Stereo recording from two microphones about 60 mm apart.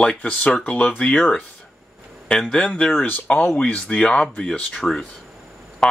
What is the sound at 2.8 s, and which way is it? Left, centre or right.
Speech, left.